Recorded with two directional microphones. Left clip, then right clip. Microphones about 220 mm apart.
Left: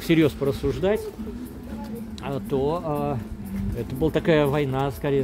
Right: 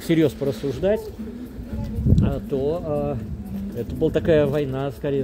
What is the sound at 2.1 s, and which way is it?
Speech, 5° right (ahead or behind).